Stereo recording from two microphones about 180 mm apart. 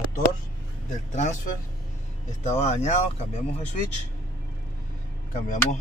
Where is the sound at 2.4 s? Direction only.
40° left (ahead or behind).